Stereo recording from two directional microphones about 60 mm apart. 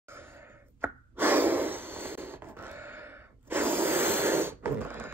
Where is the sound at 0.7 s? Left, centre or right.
Right.